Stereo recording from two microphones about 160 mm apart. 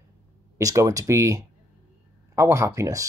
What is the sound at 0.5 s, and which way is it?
Speech, 20° right (ahead or behind).